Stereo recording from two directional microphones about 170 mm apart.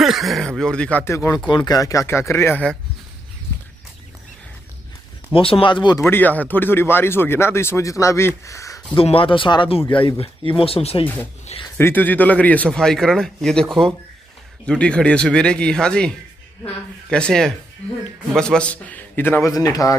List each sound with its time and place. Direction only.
0.0 s a man's voice: centre (ahead or behind)
5.3 s speech: 30° left (ahead or behind)
6.0 s speech: 10° left (ahead or behind)
8.9 s speech: 30° left (ahead or behind)
11.8 s a man's voice: 10° left (ahead or behind)